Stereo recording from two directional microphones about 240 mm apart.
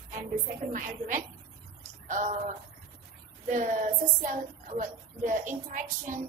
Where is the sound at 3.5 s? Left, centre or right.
Right.